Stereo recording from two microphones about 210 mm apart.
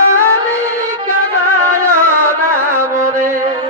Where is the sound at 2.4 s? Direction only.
40° right (ahead or behind).